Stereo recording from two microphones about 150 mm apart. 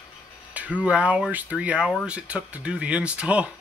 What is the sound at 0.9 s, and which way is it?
Speech, 10° right (ahead or behind).